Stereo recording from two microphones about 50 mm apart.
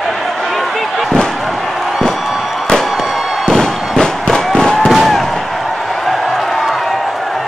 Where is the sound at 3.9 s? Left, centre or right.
Centre.